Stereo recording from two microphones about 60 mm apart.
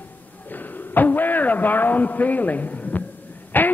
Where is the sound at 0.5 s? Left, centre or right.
Left.